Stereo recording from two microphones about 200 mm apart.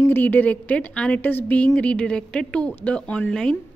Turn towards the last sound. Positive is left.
turn(degrees=5)  # may be behind; listen again after turning